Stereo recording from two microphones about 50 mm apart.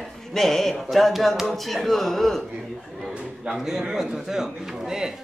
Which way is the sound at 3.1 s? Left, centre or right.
Centre.